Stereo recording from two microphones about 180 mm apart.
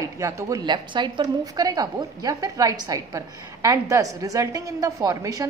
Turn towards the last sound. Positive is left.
turn(degrees=-20)  # may be behind; listen again after turning